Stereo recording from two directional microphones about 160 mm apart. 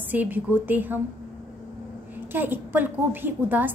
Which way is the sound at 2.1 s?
10° right (ahead or behind).